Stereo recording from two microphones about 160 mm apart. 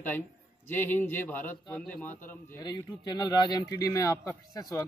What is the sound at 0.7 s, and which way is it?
A man's voice, 10° left (ahead or behind).